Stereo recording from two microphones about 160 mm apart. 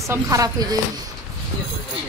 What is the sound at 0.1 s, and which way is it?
Speech, 20° right (ahead or behind).